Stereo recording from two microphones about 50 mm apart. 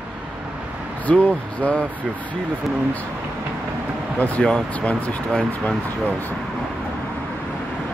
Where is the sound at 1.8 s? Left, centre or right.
Right.